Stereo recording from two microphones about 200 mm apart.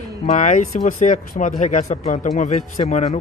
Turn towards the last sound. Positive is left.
turn(degrees=35)  # may be behind; listen again after turning